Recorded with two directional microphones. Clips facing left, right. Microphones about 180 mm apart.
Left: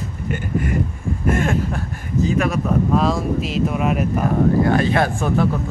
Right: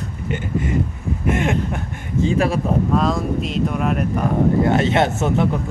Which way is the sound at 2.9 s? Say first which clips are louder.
Left 1 dB; centre (ahead or behind).